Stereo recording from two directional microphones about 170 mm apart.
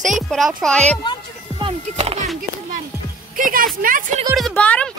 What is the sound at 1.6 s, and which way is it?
Speech, 35° right (ahead or behind).